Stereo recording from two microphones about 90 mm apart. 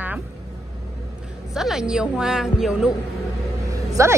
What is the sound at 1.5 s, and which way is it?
A woman's voice, 5° right (ahead or behind).